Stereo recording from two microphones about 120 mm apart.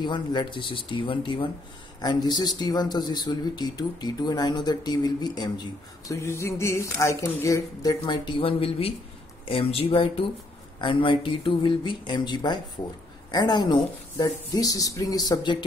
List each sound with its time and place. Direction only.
0.0 s speech: 35° left (ahead or behind)
2.0 s speech: 35° left (ahead or behind)